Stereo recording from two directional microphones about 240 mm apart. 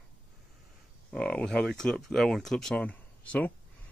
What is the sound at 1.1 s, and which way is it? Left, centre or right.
Speech, centre.